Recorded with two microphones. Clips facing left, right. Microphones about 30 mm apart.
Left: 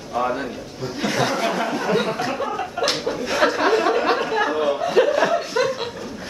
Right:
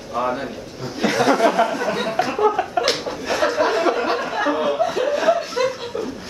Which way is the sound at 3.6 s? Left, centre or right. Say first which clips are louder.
Left 1 dB; centre.